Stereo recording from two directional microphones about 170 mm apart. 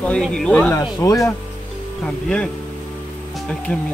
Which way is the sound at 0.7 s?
20° left (ahead or behind).